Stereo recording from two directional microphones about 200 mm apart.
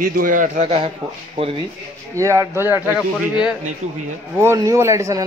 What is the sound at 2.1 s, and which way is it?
Speech, 15° right (ahead or behind).